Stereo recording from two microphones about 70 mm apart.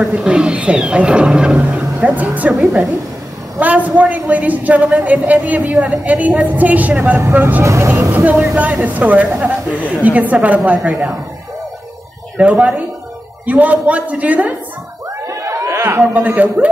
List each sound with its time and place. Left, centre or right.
0.0 s a woman's voice: centre
7.6 s speech: right
8.1 s a woman's voice: right
13.5 s a woman's voice: right
15.2 s a sound: right
16.0 s a woman's voice: right